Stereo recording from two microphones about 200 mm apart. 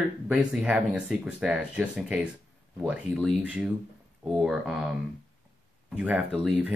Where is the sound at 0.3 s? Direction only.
5° right (ahead or behind).